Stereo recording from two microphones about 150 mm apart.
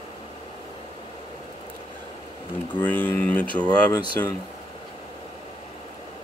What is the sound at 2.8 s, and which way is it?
Speech, 10° left (ahead or behind).